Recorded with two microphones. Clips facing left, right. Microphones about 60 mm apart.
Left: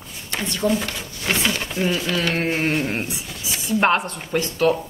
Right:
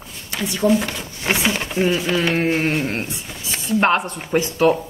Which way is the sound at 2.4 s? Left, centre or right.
Centre.